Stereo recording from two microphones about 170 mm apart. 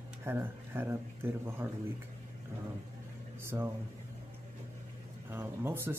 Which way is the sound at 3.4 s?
15° right (ahead or behind).